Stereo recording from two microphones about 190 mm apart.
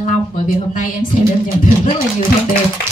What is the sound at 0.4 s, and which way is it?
Speech, 45° left (ahead or behind).